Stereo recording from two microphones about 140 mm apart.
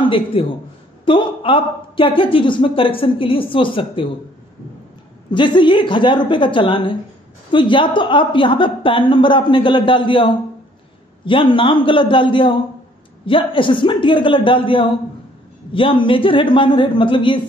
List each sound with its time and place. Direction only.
0.1 s speech: 40° left (ahead or behind)
5.3 s speech: 35° left (ahead or behind)